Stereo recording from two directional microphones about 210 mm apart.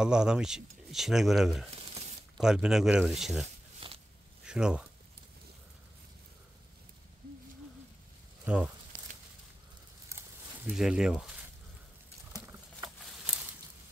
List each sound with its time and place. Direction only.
0.0 s speech: 5° right (ahead or behind)
1.7 s a sound: 30° right (ahead or behind)
2.3 s speech: 5° right (ahead or behind)
3.8 s walk: 25° right (ahead or behind)
4.5 s speech: 5° right (ahead or behind)
8.5 s speech: 5° right (ahead or behind)
10.0 s a sound: 10° right (ahead or behind)
13.0 s patter: 5° right (ahead or behind)